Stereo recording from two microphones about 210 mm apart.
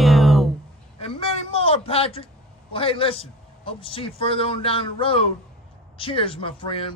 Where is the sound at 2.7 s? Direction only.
25° left (ahead or behind).